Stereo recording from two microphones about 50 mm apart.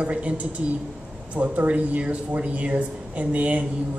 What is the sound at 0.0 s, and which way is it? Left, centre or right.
A woman's voice, right.